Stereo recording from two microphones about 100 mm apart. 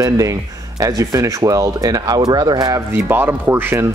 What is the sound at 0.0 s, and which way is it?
Speech, 35° right (ahead or behind).